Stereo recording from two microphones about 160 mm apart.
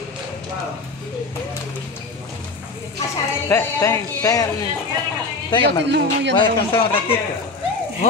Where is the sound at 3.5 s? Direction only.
15° left (ahead or behind).